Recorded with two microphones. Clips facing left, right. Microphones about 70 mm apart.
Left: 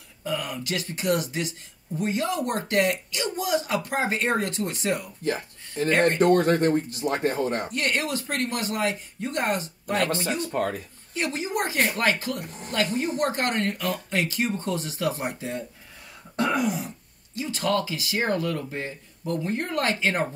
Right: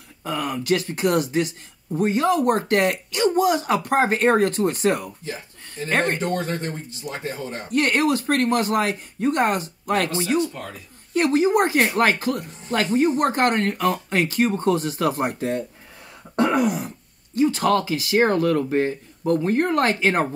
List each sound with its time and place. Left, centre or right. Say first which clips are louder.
0.2 s speech: right 4 dB; right
5.2 s speech: left 5 dB; left
5.9 s speech: left 1 dB; right
6.1 s speech: left 6 dB; left
7.7 s speech: right 7 dB; right
10.5 s speech: left 9 dB; left
11.1 s speech: right 10 dB; right
16.3 s throat clearing: right 5 dB; right
17.4 s speech: right 7 dB; right